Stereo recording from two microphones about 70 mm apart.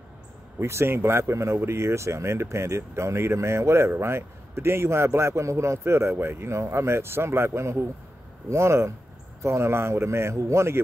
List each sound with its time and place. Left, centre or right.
0.6 s speech: right